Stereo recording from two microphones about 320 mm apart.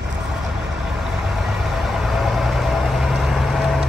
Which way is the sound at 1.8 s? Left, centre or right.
Centre.